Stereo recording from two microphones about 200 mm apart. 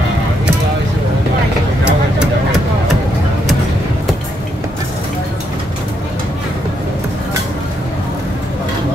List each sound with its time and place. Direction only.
1.9 s vehicle: 5° right (ahead or behind)